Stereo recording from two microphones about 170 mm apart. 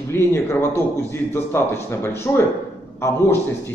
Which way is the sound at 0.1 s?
15° left (ahead or behind).